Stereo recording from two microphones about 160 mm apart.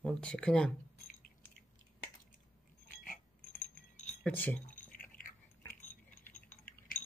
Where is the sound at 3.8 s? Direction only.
50° left (ahead or behind).